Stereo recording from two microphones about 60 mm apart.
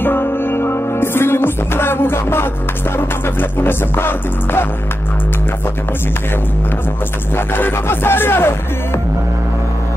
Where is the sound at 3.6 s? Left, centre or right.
Left.